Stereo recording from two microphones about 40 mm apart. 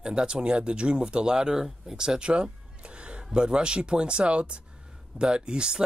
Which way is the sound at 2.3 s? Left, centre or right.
Right.